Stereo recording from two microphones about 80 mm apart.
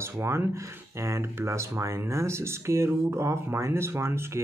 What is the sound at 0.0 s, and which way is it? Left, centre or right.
Speech, right.